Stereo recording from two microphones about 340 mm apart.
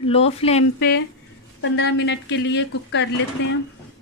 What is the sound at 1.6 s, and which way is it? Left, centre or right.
Speech, left.